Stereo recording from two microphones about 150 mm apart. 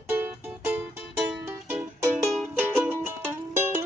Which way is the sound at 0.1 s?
10° right (ahead or behind).